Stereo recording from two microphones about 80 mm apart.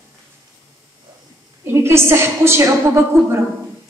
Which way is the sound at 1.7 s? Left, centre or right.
Right.